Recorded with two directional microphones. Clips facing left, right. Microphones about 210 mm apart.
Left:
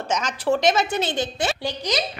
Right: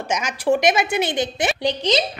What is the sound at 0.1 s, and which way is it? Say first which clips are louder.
Speech: right 2 dB; 10° right (ahead or behind).